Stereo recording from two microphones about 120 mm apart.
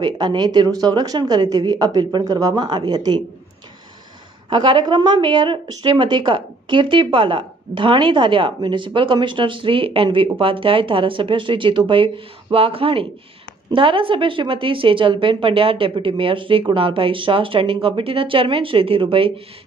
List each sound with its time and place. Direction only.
0.0 s speech: 40° right (ahead or behind)
4.5 s speech: 40° right (ahead or behind)